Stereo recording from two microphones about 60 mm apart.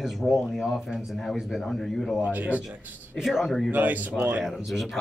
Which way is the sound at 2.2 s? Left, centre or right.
Right.